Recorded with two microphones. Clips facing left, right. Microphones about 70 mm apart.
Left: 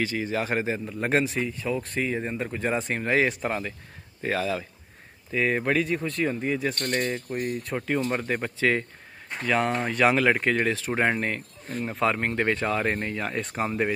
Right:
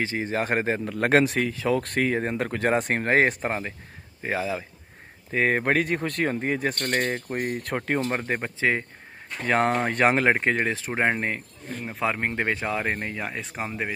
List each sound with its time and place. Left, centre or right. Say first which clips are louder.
0.0 s a man's voice: right 1 dB; right
0.8 s speech: right 7 dB; right
4.2 s speech: left 1 dB; centre
5.3 s speech: right 2 dB; right
8.3 s speech: even; right
9.4 s speech: right 2 dB; right; by 13.4 s centre
13.4 s speech: left 4 dB; centre